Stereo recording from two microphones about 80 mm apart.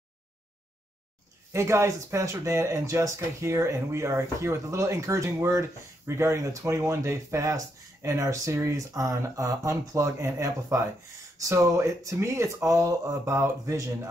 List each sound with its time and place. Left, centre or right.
1.5 s speech: right